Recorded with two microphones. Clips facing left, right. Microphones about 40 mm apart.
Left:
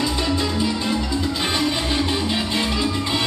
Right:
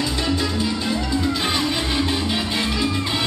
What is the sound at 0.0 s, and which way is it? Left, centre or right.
Music, centre.